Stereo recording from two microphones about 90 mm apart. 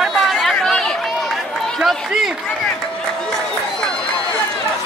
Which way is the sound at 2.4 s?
10° left (ahead or behind).